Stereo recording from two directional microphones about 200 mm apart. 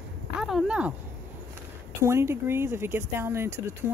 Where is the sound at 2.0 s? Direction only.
15° right (ahead or behind).